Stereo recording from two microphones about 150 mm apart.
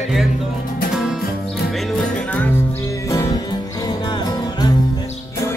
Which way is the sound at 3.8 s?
25° left (ahead or behind).